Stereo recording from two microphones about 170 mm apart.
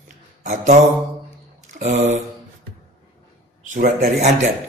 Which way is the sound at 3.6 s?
45° right (ahead or behind).